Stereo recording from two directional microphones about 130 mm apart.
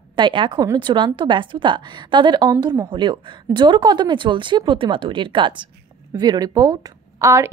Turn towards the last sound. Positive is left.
turn(degrees=-25)  # may be behind; listen again after turning